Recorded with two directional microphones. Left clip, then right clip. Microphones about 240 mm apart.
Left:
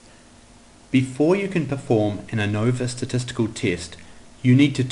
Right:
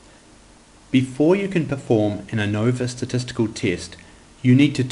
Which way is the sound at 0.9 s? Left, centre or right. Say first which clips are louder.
Right 1 dB; centre.